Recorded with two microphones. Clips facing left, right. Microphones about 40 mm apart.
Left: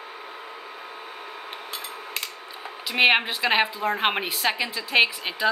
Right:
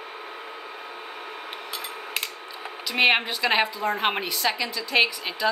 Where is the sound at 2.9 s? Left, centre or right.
Centre.